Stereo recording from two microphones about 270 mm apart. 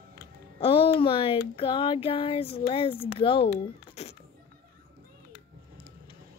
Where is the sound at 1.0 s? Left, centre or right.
Centre.